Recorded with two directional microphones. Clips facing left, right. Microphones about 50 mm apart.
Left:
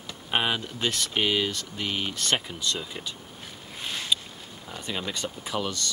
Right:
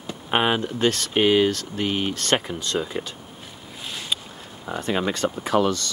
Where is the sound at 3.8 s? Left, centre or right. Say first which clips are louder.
Left 1 dB; centre.